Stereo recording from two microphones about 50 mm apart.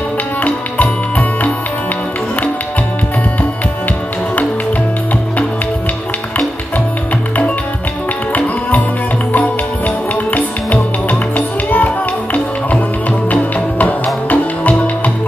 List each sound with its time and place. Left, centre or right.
0.4 s music: left
8.4 s music: left
13.3 s music: left